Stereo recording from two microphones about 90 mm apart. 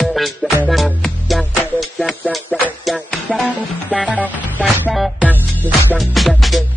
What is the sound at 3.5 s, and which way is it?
Music, 15° right (ahead or behind).